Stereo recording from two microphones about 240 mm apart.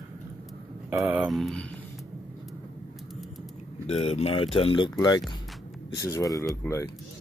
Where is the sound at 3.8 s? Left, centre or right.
Left.